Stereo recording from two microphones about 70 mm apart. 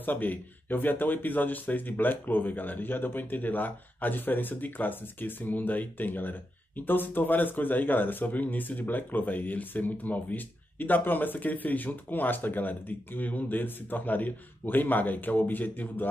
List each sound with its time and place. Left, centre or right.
0.0 s a man's voice: left